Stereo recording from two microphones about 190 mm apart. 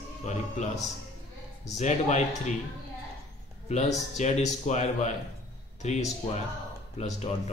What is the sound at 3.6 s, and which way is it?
A man's voice, 35° left (ahead or behind).